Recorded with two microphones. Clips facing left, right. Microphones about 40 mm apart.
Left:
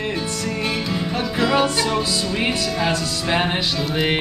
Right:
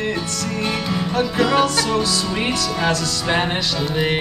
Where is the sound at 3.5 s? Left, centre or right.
Left.